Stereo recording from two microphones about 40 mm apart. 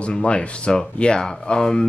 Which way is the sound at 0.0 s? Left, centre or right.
Left.